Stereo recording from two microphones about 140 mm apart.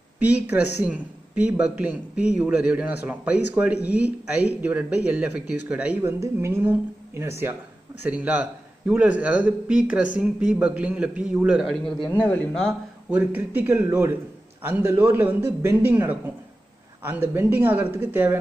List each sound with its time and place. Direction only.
0.2 s a man's voice: 10° right (ahead or behind)
6.1 s a woman's voice: 20° right (ahead or behind); by 12.7 s 10° left (ahead or behind)
13.1 s a man's voice: 15° right (ahead or behind)